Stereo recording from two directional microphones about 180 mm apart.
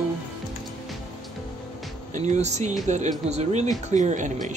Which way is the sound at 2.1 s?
40° right (ahead or behind).